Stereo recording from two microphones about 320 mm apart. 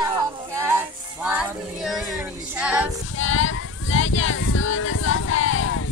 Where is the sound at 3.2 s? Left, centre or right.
Left.